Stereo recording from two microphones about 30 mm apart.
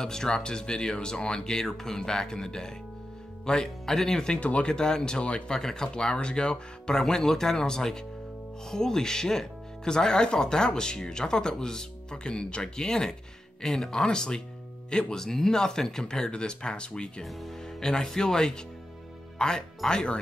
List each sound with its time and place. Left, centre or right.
0.0 s speech: left
3.6 s speech: centre
4.4 s speech: left
4.6 s speech: left
7.1 s speech: centre; by 12.6 s left
12.6 s speech: left
15.2 s speech: centre
16.3 s speech: left
17.7 s speech: left